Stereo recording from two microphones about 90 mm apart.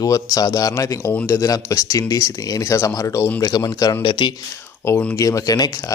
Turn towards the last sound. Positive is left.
turn(degrees=45)  # may be behind; listen again after turning